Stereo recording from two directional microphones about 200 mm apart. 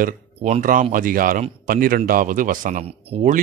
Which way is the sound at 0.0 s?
35° right (ahead or behind).